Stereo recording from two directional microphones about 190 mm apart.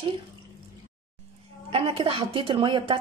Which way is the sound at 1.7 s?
30° right (ahead or behind).